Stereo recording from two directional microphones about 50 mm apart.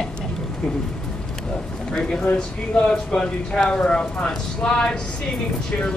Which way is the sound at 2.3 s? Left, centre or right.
Centre.